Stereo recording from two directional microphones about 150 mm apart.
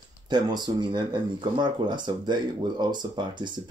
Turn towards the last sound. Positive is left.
turn(degrees=-30)  # may be behind; listen again after turning